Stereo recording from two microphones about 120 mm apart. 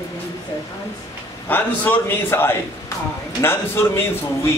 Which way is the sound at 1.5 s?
15° left (ahead or behind).